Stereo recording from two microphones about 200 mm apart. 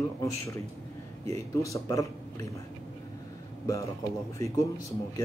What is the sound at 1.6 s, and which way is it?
Speech, 15° left (ahead or behind).